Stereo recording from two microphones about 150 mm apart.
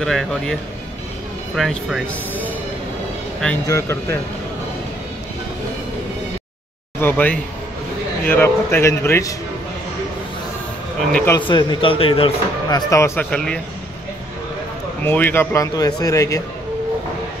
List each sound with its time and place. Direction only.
0.0 s speech: 5° left (ahead or behind)
3.6 s speech: 20° left (ahead or behind)
7.0 s speech: 15° left (ahead or behind)
11.3 s speech: 30° left (ahead or behind); by 13.6 s 5° left (ahead or behind)
15.0 s speech: 15° left (ahead or behind)